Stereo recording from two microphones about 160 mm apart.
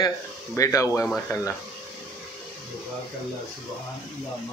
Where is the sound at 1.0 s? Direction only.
5° left (ahead or behind).